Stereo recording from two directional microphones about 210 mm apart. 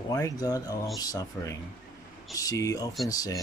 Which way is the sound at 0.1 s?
15° left (ahead or behind).